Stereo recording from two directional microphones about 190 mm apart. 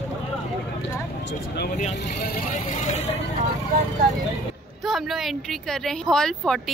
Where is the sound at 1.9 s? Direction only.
60° left (ahead or behind); by 3.2 s 35° left (ahead or behind).